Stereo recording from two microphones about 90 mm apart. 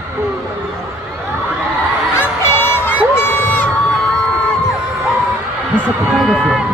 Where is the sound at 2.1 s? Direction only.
25° left (ahead or behind).